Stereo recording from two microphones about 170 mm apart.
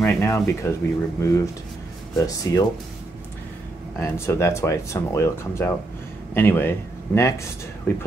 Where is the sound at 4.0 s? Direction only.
15° left (ahead or behind).